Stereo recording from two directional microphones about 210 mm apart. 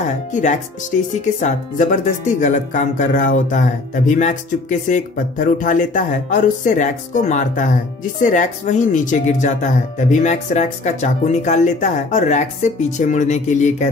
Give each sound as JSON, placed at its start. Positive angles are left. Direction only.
{"t": 0.3, "sound": "speech", "side_deg": 35}